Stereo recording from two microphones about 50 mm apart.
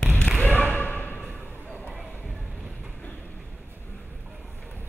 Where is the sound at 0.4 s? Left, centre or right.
Left.